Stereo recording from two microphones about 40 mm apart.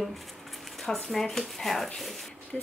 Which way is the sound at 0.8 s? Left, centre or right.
Centre.